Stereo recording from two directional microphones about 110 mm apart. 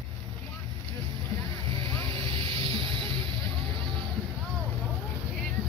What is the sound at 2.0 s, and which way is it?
Vehicle, 50° right (ahead or behind).